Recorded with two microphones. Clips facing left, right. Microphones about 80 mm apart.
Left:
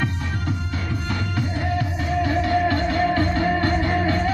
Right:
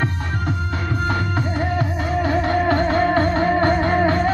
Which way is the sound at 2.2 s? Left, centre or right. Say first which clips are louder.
Right 2 dB; right.